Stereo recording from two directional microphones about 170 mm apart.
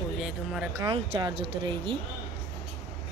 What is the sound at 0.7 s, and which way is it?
Speech, 20° right (ahead or behind).